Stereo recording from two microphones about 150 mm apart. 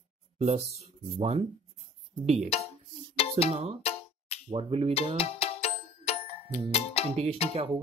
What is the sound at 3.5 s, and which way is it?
Speech, 40° right (ahead or behind).